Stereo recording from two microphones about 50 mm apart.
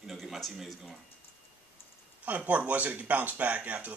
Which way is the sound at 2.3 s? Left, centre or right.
Right.